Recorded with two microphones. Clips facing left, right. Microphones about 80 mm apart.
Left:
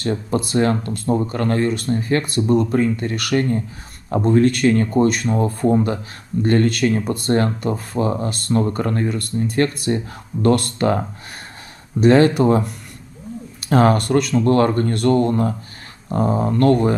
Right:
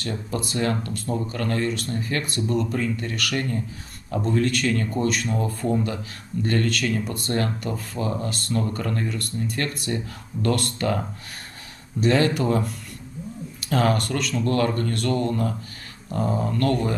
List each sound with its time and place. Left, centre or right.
0.0 s speech: left